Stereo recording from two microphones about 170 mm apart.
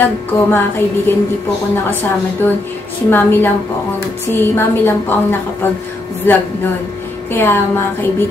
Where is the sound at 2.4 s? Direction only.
10° left (ahead or behind).